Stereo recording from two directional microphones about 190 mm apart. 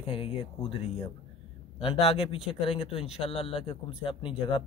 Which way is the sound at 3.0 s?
5° right (ahead or behind).